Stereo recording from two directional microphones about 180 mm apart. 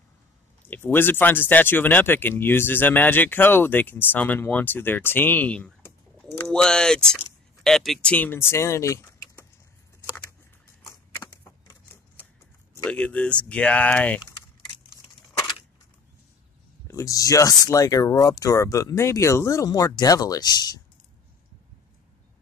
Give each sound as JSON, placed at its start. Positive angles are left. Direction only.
{"t": 0.7, "sound": "speech", "side_deg": 10}
{"t": 10.9, "sound": "typewriter", "side_deg": 15}
{"t": 12.8, "sound": "speech", "side_deg": 5}
{"t": 16.8, "sound": "speech", "side_deg": 15}